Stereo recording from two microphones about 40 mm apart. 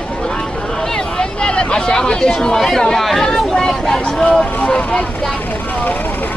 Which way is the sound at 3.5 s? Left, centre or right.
Centre.